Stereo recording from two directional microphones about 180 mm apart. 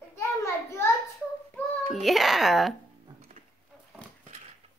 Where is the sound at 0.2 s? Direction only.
15° left (ahead or behind).